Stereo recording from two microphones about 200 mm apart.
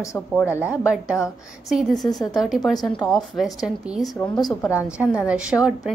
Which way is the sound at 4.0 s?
20° left (ahead or behind).